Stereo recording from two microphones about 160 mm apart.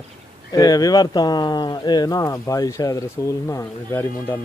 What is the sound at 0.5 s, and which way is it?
Speech, 25° left (ahead or behind).